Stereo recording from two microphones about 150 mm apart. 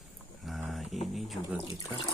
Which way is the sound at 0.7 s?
Centre (ahead or behind).